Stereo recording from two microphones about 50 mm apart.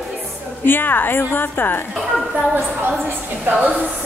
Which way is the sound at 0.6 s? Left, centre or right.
Left.